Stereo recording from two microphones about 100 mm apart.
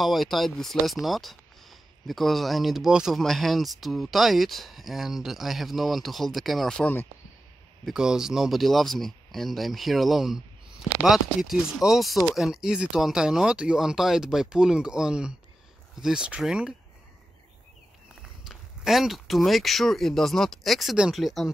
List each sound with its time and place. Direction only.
0.0 s speech: centre (ahead or behind)
6.8 s speech: 20° left (ahead or behind)
7.8 s speech: 5° right (ahead or behind)
18.4 s speech: centre (ahead or behind)